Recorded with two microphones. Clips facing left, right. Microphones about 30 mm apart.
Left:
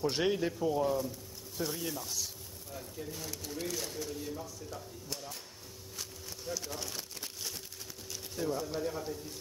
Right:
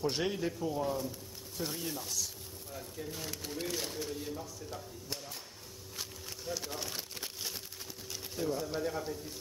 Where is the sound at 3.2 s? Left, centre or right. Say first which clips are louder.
Right 1 dB; right.